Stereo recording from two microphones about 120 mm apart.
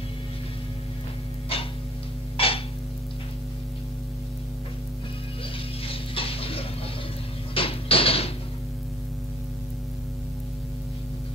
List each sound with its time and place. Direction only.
1.5 s music: 55° left (ahead or behind)
7.5 s music: 50° left (ahead or behind)